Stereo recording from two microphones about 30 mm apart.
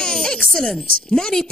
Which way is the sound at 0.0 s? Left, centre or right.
Left.